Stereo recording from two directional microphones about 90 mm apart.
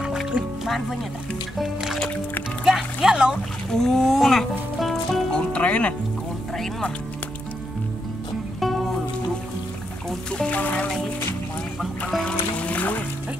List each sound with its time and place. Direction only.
0.0 s music: 5° right (ahead or behind)
1.6 s music: 5° right (ahead or behind)
3.7 s speech: 5° left (ahead or behind)
5.5 s speech: 15° left (ahead or behind)
8.5 s music: centre (ahead or behind)
10.3 s speech: 15° left (ahead or behind)
12.1 s music: 5° left (ahead or behind)
12.5 s music: 15° left (ahead or behind)